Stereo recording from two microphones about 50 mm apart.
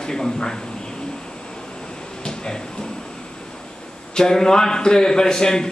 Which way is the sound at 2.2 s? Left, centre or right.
Centre.